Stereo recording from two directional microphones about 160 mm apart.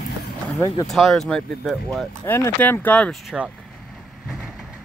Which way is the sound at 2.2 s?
15° left (ahead or behind).